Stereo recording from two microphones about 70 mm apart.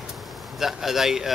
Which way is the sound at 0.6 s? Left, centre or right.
Centre.